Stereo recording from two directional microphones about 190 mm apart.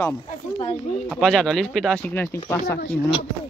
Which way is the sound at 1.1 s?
5° left (ahead or behind).